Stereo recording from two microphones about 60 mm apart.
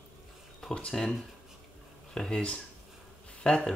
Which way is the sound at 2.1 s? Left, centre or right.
Centre.